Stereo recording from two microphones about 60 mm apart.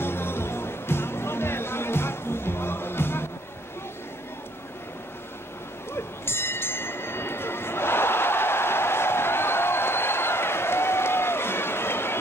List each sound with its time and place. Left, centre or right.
0.0 s music: left
5.9 s music: left